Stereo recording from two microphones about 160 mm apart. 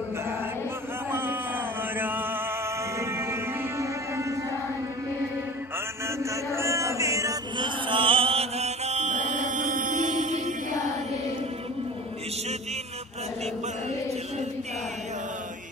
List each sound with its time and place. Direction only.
1.1 s a sound: 15° right (ahead or behind)
2.0 s chant: 10° right (ahead or behind)
3.0 s music: 15° right (ahead or behind)
6.0 s chant: 15° right (ahead or behind); by 10.9 s 50° right (ahead or behind)